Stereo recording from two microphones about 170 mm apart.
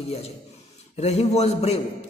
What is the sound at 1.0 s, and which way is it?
Speech, 40° left (ahead or behind).